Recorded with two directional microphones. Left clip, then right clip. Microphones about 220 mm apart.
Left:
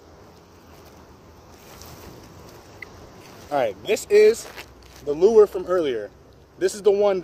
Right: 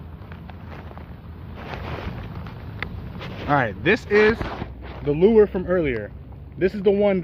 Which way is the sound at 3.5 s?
15° right (ahead or behind).